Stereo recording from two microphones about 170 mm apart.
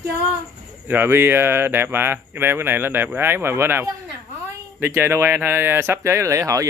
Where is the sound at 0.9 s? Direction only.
15° right (ahead or behind).